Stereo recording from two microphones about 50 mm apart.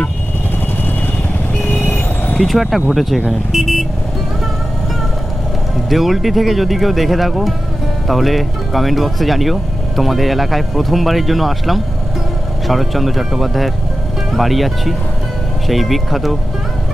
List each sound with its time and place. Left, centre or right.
1.7 s vehicle: left
2.4 s speech: centre
5.9 s speech: centre